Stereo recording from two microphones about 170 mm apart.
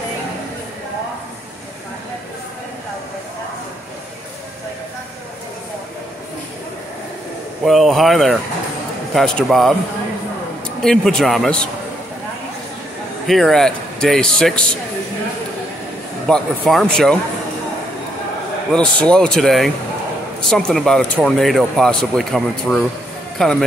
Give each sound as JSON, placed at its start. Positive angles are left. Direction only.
{"t": 7.6, "sound": "speech", "side_deg": 0}
{"t": 10.8, "sound": "speech", "side_deg": 5}
{"t": 13.3, "sound": "speech", "side_deg": 0}
{"t": 16.3, "sound": "speech", "side_deg": 0}
{"t": 18.9, "sound": "speech", "side_deg": 5}